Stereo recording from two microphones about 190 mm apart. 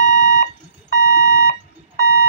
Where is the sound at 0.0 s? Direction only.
45° left (ahead or behind).